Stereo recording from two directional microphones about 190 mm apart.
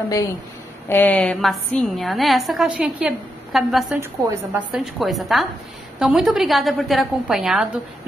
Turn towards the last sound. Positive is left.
turn(degrees=-5)  # may be behind; listen again after turning